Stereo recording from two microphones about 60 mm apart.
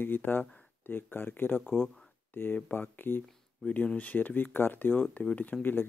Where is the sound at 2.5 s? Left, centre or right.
Left.